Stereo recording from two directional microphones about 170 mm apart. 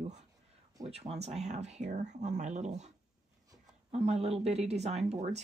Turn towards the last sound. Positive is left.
turn(degrees=-40)  # may be behind; listen again after turning